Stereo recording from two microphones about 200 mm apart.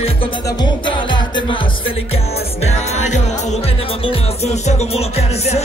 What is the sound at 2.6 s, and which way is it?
Music, 35° left (ahead or behind).